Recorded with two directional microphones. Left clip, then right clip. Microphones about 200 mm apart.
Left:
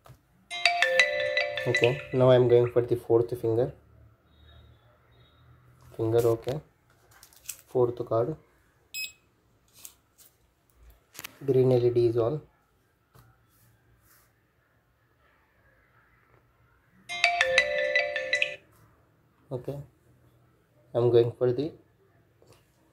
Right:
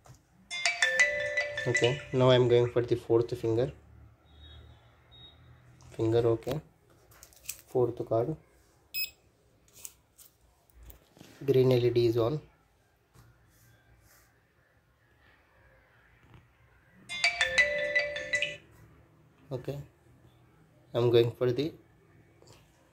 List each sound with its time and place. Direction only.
0.7 s music: 25° left (ahead or behind)
1.2 s music: 45° left (ahead or behind)
2.1 s speech: 5° left (ahead or behind)
5.9 s speech: centre (ahead or behind)
7.6 s speech: centre (ahead or behind)
11.4 s speech: 5° left (ahead or behind)
17.1 s ringtone: 45° left (ahead or behind)
17.7 s music: 45° left (ahead or behind)
19.5 s speech: 10° left (ahead or behind)
20.9 s speech: 5° left (ahead or behind)